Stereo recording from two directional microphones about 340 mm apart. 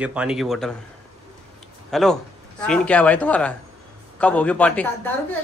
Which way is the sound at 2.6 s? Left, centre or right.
Centre.